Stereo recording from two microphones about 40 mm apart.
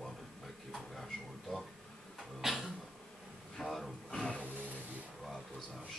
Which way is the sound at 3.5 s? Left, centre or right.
Centre.